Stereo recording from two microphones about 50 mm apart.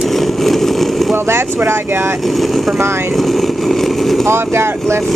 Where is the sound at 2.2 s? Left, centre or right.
Centre.